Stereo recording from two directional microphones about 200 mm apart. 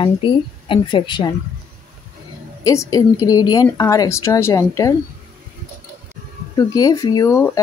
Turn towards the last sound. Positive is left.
turn(degrees=15)  # may be behind; listen again after turning